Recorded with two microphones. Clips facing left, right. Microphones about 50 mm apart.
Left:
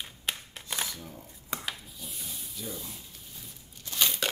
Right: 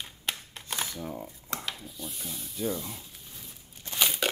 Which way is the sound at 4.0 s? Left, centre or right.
Centre.